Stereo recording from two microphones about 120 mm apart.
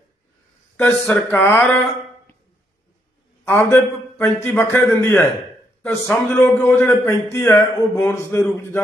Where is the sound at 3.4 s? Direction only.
20° left (ahead or behind).